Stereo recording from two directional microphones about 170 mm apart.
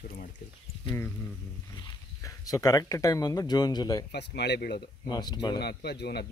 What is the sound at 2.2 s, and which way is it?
Speech, 20° left (ahead or behind).